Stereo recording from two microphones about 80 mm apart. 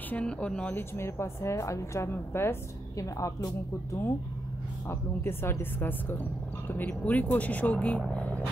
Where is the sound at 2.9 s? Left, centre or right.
Left.